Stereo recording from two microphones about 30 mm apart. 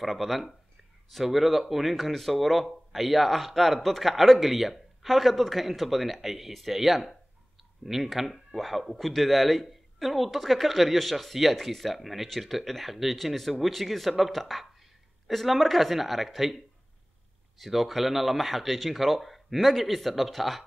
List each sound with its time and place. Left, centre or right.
0.0 s speech: centre